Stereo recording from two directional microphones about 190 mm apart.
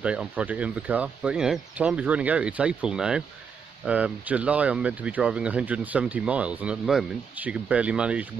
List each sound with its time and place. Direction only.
0.0 s speech: 5° right (ahead or behind)